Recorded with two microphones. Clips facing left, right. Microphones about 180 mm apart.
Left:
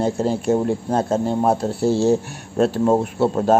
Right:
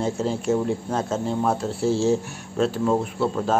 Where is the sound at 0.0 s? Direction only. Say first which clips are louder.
Left 4 dB; 35° left (ahead or behind).